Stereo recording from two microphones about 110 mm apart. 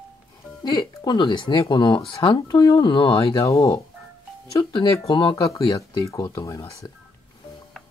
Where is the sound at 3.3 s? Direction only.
30° left (ahead or behind).